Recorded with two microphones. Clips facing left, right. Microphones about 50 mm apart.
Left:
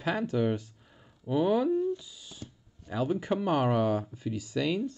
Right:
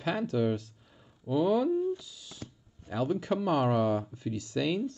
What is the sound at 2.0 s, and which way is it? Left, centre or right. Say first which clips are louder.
Owl: even; centre.